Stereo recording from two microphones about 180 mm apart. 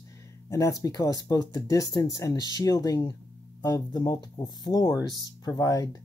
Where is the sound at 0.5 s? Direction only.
15° left (ahead or behind).